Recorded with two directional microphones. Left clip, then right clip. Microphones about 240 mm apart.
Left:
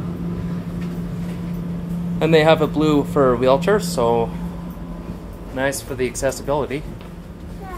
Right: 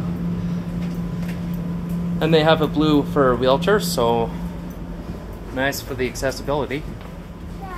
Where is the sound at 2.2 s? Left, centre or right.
Centre.